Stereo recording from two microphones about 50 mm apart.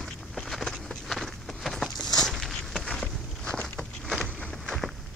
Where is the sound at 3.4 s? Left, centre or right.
Centre.